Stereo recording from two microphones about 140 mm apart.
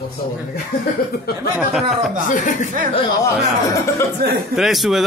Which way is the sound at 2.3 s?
65° left (ahead or behind).